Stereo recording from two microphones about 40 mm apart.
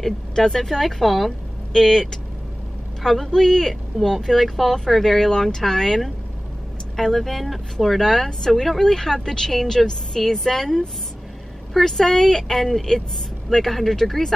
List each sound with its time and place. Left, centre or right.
0.0 s a woman's voice: centre
1.7 s a woman's voice: centre